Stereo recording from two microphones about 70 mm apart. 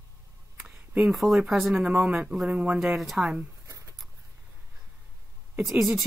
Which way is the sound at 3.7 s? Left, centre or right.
Right.